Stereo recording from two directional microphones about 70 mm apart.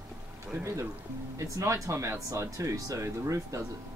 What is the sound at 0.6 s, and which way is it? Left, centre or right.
Speech, right.